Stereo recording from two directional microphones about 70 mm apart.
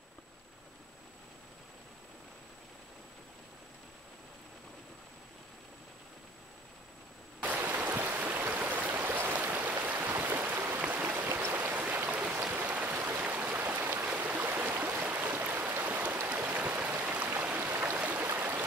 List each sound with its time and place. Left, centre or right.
7.4 s stream: right
10.8 s a sound: right
12.4 s stream: right